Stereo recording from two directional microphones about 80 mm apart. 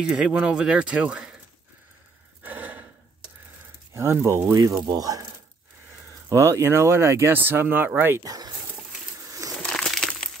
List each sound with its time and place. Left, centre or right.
0.0 s speech: centre
2.4 s a sound: right
3.9 s speech: right
4.8 s speech: right
6.2 s speech: right
8.2 s speech: right
9.6 s crushing: centre